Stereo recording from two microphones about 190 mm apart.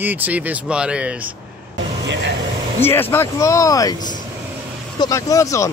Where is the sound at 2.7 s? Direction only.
10° left (ahead or behind).